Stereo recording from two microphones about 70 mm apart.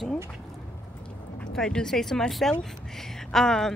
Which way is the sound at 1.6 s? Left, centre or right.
Centre.